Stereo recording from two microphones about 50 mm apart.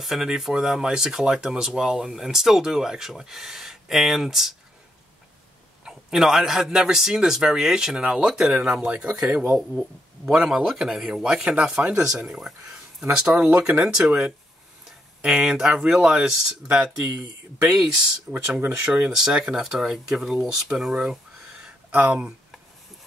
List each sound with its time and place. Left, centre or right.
0.0 s speech: centre
5.9 s speech: centre
8.3 s speech: centre
8.8 s speech: right
12.3 s speech: centre
14.9 s a sound: centre
15.9 s speech: centre
18.3 s speech: centre
20.7 s a sound: centre